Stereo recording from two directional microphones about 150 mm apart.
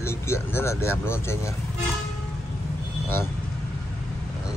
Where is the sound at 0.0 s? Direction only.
15° left (ahead or behind).